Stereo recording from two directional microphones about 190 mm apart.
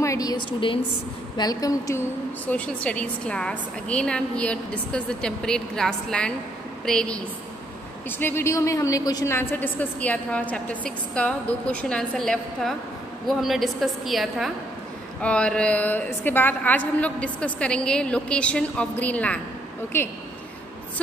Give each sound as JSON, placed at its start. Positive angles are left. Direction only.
{"t": 0.0, "sound": "a woman's voice", "side_deg": 15}
{"t": 8.2, "sound": "a woman's voice", "side_deg": 10}